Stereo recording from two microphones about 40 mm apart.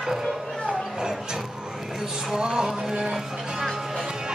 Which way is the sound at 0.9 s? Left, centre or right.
Centre.